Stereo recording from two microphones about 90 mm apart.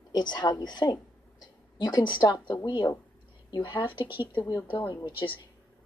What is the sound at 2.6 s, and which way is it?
Speech, 55° left (ahead or behind).